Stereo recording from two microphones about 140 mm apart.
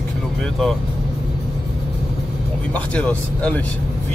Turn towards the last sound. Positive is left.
turn(degrees=10)  # may be behind; listen again after turning